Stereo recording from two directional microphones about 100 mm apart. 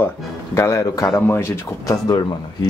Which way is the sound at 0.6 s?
30° left (ahead or behind).